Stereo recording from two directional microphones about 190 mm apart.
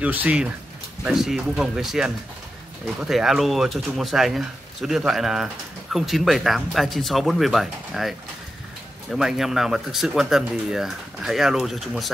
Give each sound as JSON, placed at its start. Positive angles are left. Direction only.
{"t": 0.0, "sound": "speech", "side_deg": -10}